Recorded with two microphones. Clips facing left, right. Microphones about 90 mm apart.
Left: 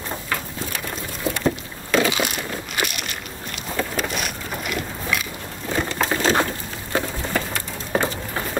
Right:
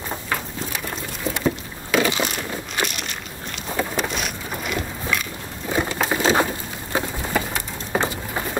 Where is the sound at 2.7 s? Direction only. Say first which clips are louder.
Even; 5° left (ahead or behind).